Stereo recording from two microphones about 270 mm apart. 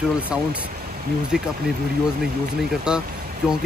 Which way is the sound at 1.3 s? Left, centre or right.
Centre.